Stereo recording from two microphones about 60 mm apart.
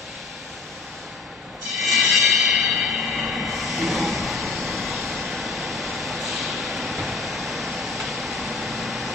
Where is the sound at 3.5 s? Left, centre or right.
Centre.